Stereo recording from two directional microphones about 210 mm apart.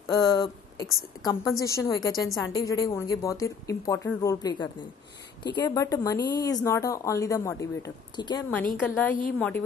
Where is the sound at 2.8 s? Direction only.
15° left (ahead or behind).